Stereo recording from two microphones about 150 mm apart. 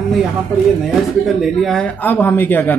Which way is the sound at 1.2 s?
Centre (ahead or behind).